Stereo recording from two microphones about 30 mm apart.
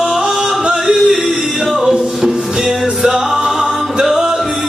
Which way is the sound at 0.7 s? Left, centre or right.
Centre.